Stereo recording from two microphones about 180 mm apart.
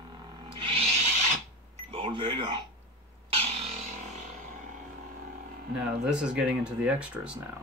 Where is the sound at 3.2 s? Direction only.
35° right (ahead or behind).